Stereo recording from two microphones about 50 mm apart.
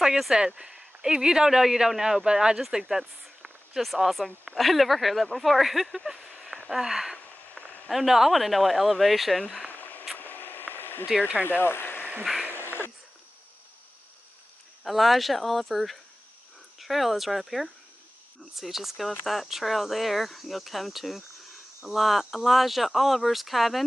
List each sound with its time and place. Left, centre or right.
0.0 s speech: centre
6.7 s a sound: centre
7.9 s speech: centre
9.7 s a sound: left
11.4 s speech: left
14.8 s speech: centre